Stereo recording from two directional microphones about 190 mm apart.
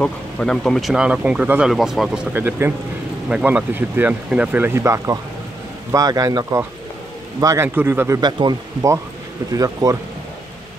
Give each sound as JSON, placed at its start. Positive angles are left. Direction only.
{"t": 0.0, "sound": "speech", "side_deg": 5}